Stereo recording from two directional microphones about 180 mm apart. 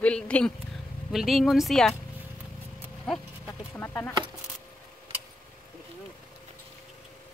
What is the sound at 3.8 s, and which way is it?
Speech, 10° left (ahead or behind).